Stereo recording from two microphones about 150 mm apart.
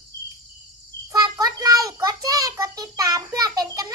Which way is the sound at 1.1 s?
25° right (ahead or behind).